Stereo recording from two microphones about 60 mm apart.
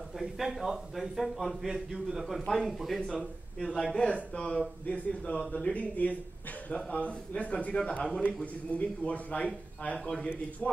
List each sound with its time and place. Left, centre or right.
0.2 s a man's voice: centre